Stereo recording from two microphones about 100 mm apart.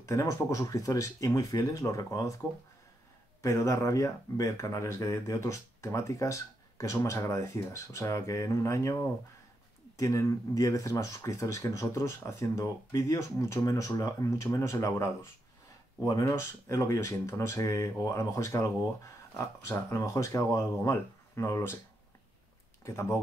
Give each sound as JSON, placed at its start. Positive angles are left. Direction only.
{"t": 0.0, "sound": "speech", "side_deg": 30}
{"t": 3.4, "sound": "speech", "side_deg": 30}
{"t": 9.9, "sound": "speech", "side_deg": 35}
{"t": 22.8, "sound": "speech", "side_deg": 30}